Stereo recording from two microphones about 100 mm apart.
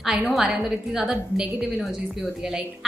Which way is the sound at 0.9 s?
5° right (ahead or behind).